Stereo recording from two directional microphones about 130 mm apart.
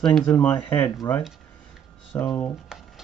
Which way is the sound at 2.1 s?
20° left (ahead or behind).